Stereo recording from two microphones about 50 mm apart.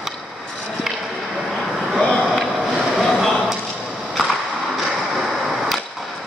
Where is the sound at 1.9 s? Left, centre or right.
Centre.